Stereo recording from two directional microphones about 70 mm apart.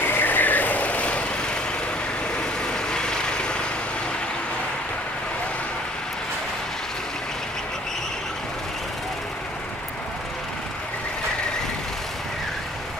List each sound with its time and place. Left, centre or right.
0.0 s vehicle: left; by 3.5 s centre